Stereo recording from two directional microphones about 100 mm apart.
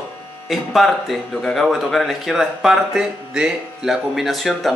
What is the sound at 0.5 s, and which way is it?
Speech, centre (ahead or behind).